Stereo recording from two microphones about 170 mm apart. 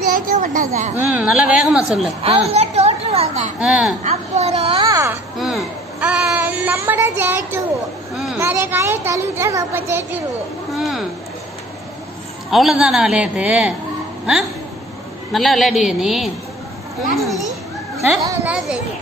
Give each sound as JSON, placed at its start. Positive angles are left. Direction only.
{"t": 0.1, "sound": "a child's voice", "side_deg": -55}
{"t": 1.1, "sound": "a woman's voice", "side_deg": -5}
{"t": 2.5, "sound": "a sound", "side_deg": -40}
{"t": 3.5, "sound": "speech", "side_deg": -5}
{"t": 4.0, "sound": "a sound", "side_deg": -40}
{"t": 4.8, "sound": "a sound", "side_deg": -20}
{"t": 5.4, "sound": "a sound", "side_deg": 0}
{"t": 8.4, "sound": "speech", "side_deg": -15}
{"t": 10.7, "sound": "speech", "side_deg": 0}
{"t": 12.4, "sound": "a woman's voice", "side_deg": 0}
{"t": 15.3, "sound": "a woman's voice", "side_deg": 0}
{"t": 18.2, "sound": "speech", "side_deg": -15}